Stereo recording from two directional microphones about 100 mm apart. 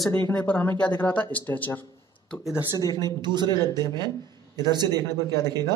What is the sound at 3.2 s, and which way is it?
A man's voice, 45° right (ahead or behind).